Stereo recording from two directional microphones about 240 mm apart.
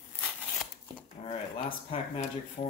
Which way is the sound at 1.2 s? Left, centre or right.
Left.